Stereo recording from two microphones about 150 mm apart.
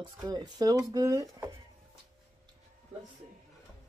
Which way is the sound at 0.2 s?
25° right (ahead or behind).